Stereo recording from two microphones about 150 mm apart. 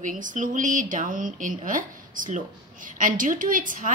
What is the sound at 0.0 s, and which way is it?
Speech, 60° right (ahead or behind).